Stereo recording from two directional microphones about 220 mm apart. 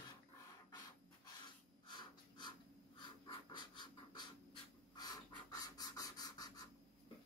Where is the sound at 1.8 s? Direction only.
20° left (ahead or behind).